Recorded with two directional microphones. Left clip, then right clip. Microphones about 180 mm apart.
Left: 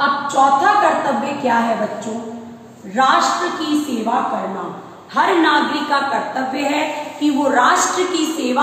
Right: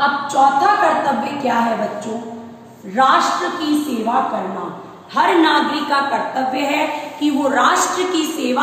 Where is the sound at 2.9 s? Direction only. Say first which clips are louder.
Right 1 dB; 15° right (ahead or behind).